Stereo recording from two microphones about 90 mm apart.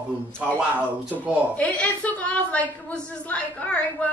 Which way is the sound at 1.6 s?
15° left (ahead or behind).